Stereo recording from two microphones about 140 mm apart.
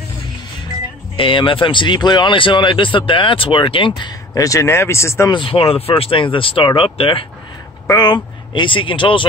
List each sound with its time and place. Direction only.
1.1 s speech: 40° left (ahead or behind)
4.3 s speech: 25° left (ahead or behind)
5.3 s speech: 40° left (ahead or behind)
7.8 s speech: 25° left (ahead or behind)